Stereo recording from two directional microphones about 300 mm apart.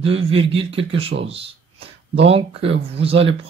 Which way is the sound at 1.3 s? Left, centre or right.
Centre.